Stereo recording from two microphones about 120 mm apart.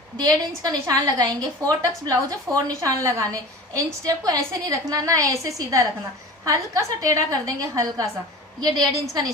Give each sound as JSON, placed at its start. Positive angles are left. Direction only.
{"t": 0.7, "sound": "a woman's voice", "side_deg": -35}